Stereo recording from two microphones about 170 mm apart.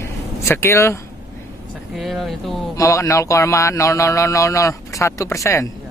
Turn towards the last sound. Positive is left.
turn(degrees=15)  # may be behind; listen again after turning